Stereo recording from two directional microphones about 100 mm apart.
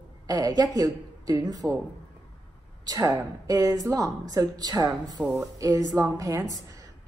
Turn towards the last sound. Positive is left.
turn(degrees=-35)  # may be behind; listen again after turning